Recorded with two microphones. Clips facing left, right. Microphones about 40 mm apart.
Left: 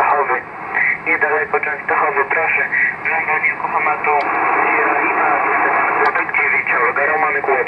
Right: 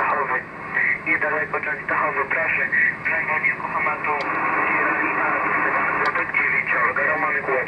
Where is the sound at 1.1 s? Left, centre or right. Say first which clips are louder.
Left 6 dB; left.